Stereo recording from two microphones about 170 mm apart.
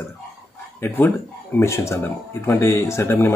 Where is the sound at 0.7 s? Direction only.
15° left (ahead or behind).